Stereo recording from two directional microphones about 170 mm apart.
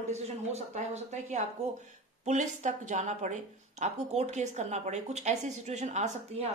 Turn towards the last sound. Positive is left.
turn(degrees=-45)  # may be behind; listen again after turning